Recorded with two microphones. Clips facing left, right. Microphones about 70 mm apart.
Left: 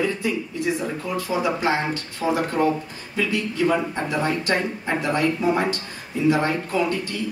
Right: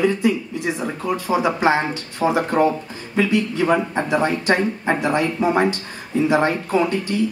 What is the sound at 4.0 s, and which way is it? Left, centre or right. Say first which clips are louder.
Speech: right 4 dB; right.